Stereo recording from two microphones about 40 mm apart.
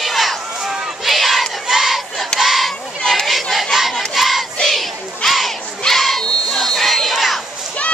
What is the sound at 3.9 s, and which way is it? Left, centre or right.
Child singing, centre.